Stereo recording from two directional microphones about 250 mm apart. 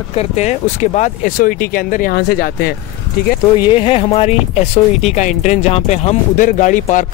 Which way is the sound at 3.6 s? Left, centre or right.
Left.